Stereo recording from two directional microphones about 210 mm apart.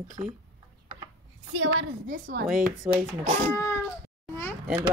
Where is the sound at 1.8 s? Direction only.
45° right (ahead or behind).